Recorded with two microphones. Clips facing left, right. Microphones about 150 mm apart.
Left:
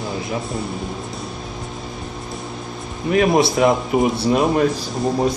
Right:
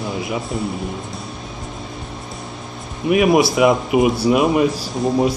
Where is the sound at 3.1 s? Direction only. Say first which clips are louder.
Right 2 dB; 15° right (ahead or behind).